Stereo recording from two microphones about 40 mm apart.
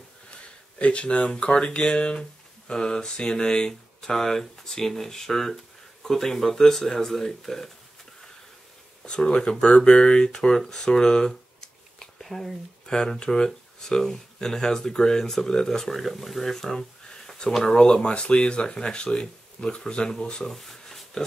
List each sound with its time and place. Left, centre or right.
0.3 s a sound: left
1.4 s speech: left; by 7.7 s centre
9.0 s speech: left; by 12.5 s centre
12.8 s speech: centre
17.6 s speech: left
20.4 s a sound: centre